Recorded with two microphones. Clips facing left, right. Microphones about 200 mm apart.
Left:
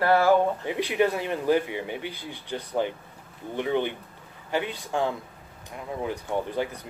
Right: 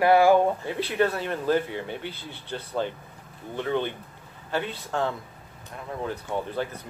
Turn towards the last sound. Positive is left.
turn(degrees=15)  # may be behind; listen again after turning